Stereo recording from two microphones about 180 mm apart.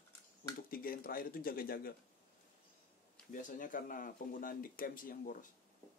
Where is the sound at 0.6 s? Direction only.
50° left (ahead or behind).